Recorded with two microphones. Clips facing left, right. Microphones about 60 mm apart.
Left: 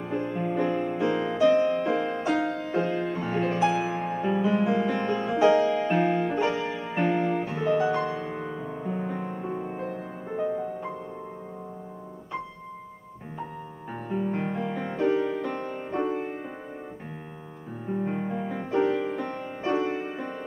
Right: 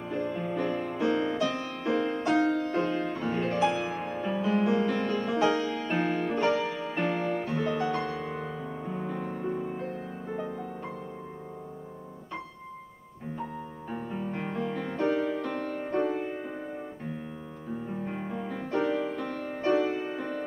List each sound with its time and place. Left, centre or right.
0.0 s music: centre
13.9 s music: centre
17.8 s music: centre
19.9 s music: centre